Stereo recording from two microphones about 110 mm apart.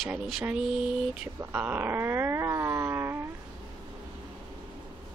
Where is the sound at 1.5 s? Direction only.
15° right (ahead or behind).